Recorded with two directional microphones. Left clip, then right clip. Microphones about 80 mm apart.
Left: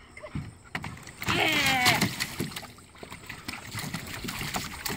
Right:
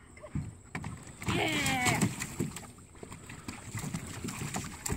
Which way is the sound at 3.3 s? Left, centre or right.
Centre.